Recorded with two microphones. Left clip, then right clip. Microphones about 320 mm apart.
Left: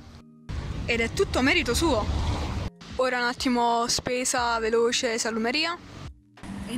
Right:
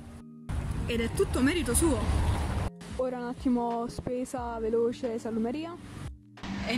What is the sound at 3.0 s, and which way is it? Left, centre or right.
Speech, left.